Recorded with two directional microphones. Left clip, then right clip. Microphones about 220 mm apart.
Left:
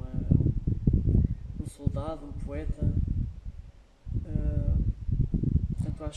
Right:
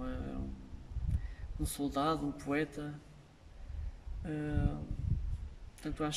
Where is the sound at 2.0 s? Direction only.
45° right (ahead or behind).